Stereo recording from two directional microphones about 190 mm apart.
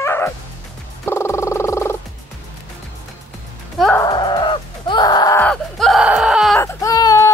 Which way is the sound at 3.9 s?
25° left (ahead or behind).